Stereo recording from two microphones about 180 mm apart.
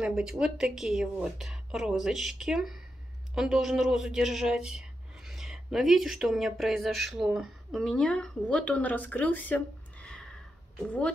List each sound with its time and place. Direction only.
0.0 s a woman's voice: 5° right (ahead or behind)